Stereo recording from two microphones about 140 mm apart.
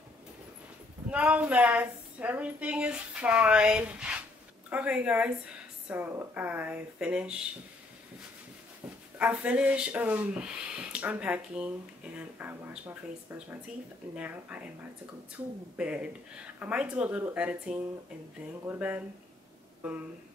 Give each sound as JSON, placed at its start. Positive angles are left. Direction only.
{"t": 1.1, "sound": "speech", "side_deg": -10}
{"t": 9.2, "sound": "speech", "side_deg": -10}
{"t": 15.8, "sound": "speech", "side_deg": -10}